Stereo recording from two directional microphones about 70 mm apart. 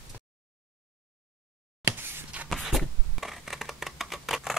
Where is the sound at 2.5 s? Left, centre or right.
Centre.